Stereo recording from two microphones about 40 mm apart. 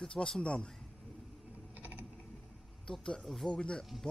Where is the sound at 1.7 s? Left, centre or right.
Right.